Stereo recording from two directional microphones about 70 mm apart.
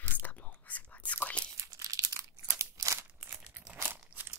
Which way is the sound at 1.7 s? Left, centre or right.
Right.